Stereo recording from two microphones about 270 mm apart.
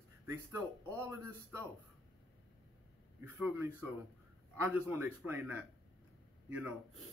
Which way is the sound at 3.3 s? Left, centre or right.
Centre.